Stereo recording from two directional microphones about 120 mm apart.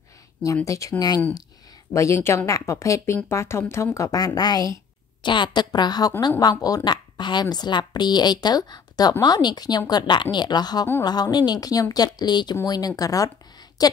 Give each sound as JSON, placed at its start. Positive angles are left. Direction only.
{"t": 0.7, "sound": "a woman's voice", "side_deg": 30}